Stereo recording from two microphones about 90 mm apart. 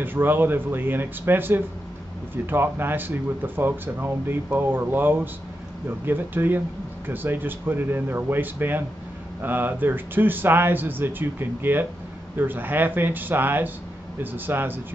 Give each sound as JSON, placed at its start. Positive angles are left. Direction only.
{"t": 0.0, "sound": "speech", "side_deg": -25}